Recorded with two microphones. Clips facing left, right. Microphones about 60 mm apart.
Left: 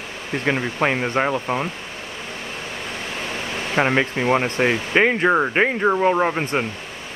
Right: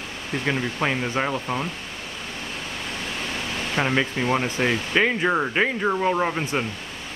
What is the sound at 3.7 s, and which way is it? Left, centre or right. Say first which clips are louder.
Speech: left 4 dB; left.